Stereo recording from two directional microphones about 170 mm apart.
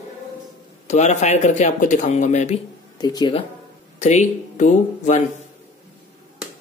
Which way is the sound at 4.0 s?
45° left (ahead or behind).